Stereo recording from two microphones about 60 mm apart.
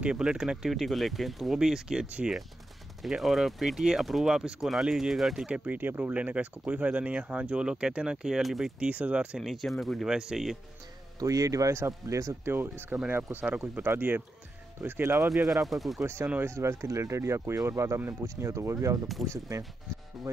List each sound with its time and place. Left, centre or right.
0.0 s speech: centre
5.5 s speech: right
6.1 s speech: right
8.4 s speech: centre
8.7 s speech: right
9.4 s speech: centre
10.0 s speech: centre
11.1 s a man's voice: right
11.7 s speech: right
12.9 s speech: right
15.3 s speech: centre
16.4 s speech: right